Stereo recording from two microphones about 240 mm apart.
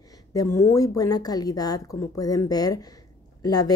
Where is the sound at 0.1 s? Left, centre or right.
Centre.